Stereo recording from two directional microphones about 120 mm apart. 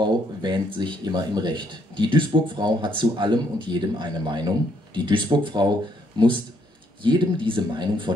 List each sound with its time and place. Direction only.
0.0 s speech: 40° right (ahead or behind)